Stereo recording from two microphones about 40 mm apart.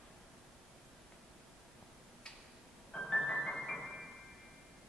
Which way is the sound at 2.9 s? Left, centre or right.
Centre.